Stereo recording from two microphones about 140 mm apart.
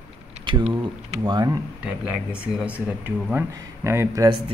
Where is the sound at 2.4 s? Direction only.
5° right (ahead or behind).